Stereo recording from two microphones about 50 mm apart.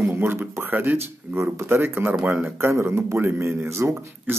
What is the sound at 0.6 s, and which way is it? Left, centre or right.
Speech, right.